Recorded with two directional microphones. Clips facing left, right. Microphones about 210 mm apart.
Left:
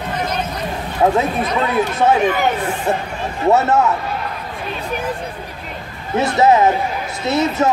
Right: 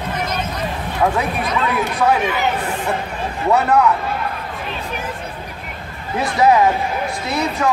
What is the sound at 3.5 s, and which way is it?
Speech, 25° left (ahead or behind).